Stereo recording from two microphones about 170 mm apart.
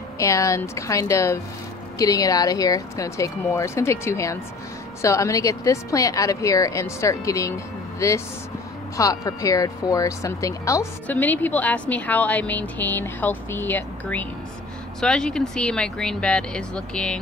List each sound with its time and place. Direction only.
0.2 s speech: 20° left (ahead or behind)